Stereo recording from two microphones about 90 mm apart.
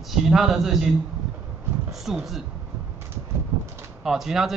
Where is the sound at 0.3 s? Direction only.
5° right (ahead or behind).